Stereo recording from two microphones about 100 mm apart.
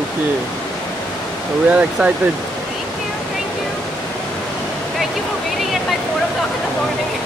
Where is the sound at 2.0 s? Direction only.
10° right (ahead or behind).